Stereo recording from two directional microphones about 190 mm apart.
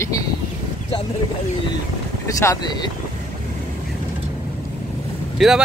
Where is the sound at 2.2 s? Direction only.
20° left (ahead or behind).